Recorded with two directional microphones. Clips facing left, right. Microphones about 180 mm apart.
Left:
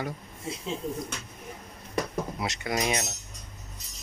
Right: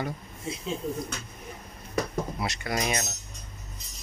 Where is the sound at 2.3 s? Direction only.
20° left (ahead or behind).